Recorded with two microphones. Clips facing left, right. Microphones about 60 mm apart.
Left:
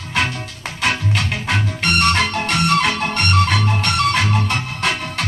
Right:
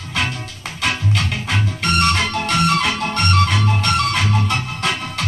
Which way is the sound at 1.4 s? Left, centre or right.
Left.